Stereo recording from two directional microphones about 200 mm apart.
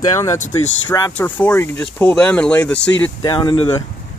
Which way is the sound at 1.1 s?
5° left (ahead or behind).